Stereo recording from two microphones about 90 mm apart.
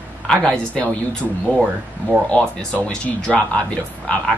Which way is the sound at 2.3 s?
10° left (ahead or behind).